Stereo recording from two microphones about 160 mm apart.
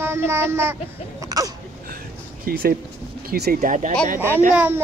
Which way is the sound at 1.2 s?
20° right (ahead or behind).